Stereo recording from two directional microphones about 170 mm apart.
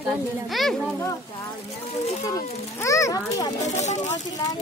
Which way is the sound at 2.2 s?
20° left (ahead or behind).